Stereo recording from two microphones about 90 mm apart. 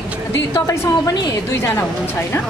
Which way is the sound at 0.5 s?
35° left (ahead or behind).